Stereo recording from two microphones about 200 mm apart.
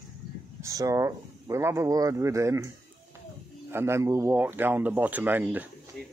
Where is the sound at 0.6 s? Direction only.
15° right (ahead or behind).